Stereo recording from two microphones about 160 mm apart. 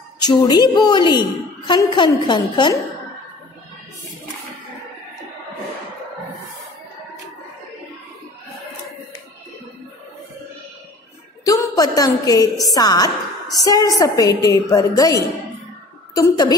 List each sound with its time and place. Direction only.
0.2 s a woman's voice: 25° left (ahead or behind)
11.4 s a woman's voice: 20° left (ahead or behind)
16.2 s a woman's voice: 25° left (ahead or behind)